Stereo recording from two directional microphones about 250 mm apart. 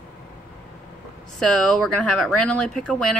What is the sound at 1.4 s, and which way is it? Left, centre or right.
A woman's voice, centre.